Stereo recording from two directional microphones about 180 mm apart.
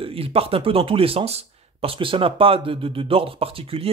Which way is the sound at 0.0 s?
30° right (ahead or behind).